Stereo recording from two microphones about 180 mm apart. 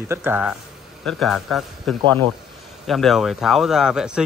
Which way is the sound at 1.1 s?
Centre (ahead or behind).